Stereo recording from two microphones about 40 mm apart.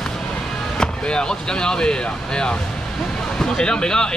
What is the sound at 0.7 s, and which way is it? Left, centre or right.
Speech, left.